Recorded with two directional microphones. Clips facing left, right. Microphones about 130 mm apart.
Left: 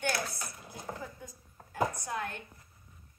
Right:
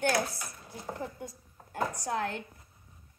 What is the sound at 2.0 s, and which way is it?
Speech, 85° right.